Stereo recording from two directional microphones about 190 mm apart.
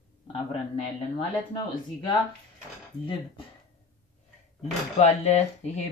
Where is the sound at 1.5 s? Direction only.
25° left (ahead or behind).